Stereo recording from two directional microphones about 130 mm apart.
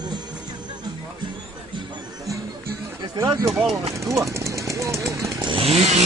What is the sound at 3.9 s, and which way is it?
Jackhammer, 25° right (ahead or behind).